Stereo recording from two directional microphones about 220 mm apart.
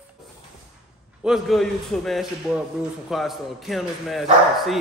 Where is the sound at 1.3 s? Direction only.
Centre (ahead or behind).